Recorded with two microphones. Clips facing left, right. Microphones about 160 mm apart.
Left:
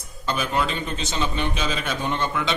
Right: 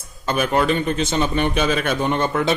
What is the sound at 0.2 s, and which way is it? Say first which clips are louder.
A man's voice: right 5 dB; 55° right (ahead or behind).